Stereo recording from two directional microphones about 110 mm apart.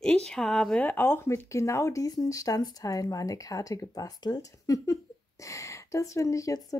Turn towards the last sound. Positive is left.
turn(degrees=30)  # may be behind; listen again after turning